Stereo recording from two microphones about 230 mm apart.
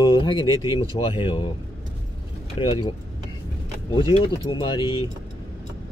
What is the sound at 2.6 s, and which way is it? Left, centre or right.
Speech, left.